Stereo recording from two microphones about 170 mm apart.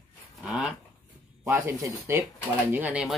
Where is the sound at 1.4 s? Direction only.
15° right (ahead or behind).